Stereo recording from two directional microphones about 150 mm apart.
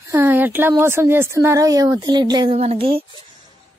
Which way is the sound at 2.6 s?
40° right (ahead or behind).